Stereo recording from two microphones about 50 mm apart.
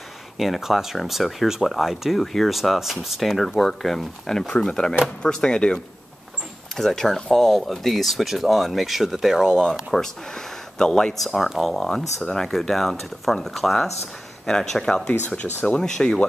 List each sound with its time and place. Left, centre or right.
0.4 s speech: centre
6.8 s speech: centre
9.9 s speech: centre
15.0 s speech: left